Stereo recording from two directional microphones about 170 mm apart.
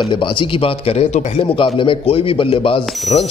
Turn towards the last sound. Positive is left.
turn(degrees=0)  # may be behind; listen again after turning